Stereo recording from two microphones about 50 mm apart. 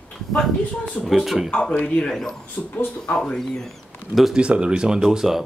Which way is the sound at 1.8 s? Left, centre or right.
Left.